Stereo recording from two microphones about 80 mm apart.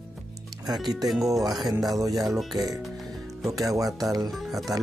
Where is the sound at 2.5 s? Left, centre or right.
Right.